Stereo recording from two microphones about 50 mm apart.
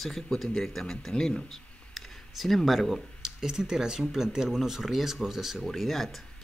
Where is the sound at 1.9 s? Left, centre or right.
Centre.